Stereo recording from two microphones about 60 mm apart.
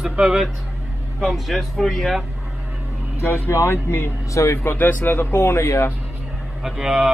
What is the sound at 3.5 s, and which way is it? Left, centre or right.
Speech, left.